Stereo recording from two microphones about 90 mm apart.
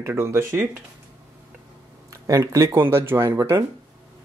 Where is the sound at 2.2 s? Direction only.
40° right (ahead or behind).